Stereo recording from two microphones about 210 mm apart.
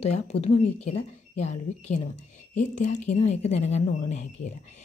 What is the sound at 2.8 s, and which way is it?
A woman's voice, 35° left (ahead or behind).